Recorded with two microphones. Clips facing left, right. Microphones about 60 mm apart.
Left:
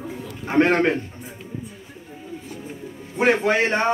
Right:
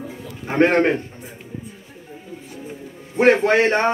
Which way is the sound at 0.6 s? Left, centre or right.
Right.